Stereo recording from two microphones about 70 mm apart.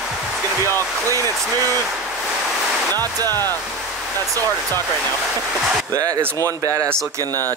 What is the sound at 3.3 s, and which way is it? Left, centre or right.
Speech, left.